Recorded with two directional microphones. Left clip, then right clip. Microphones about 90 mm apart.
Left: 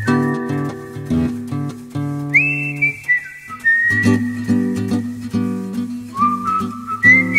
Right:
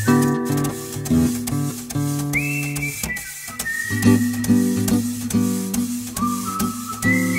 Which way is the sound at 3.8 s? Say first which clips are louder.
Left 4 dB; 5° left (ahead or behind).